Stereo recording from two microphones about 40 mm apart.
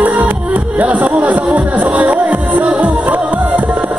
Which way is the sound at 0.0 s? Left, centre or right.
Right.